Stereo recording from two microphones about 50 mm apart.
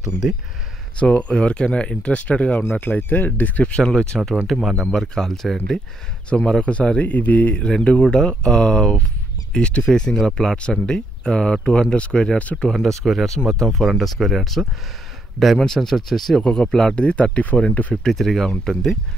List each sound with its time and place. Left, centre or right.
0.9 s speech: left
2.7 s speech: left
3.6 s speech: centre
4.6 s speech: centre
4.9 s speech: centre
6.3 s speech: centre
12.8 s speech: centre; by 17.6 s left
18.0 s speech: centre